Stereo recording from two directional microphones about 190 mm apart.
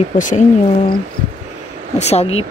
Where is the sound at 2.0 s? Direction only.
35° left (ahead or behind).